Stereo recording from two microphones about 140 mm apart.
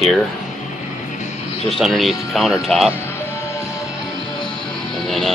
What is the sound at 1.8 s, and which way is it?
Speech, centre (ahead or behind).